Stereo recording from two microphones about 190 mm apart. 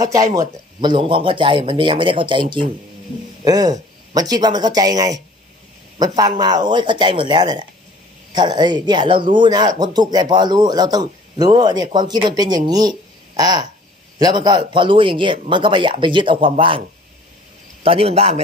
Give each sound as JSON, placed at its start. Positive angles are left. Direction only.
{"t": 0.0, "sound": "speech", "side_deg": -15}
{"t": 17.8, "sound": "a man's voice", "side_deg": -30}